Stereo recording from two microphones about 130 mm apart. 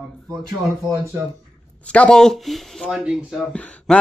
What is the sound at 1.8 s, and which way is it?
Speech, 10° left (ahead or behind).